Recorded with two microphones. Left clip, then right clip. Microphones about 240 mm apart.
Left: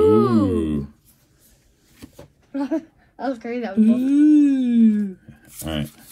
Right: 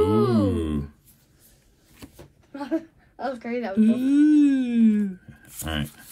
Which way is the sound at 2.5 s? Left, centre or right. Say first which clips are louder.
Left 4 dB; left.